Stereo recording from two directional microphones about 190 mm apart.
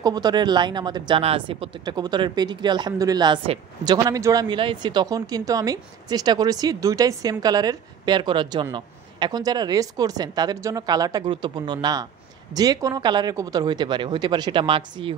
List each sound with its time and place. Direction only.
0.0 s speech: 20° right (ahead or behind)